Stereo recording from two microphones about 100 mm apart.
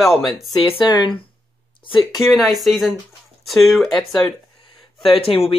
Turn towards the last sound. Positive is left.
turn(degrees=75)  # may be behind; listen again after turning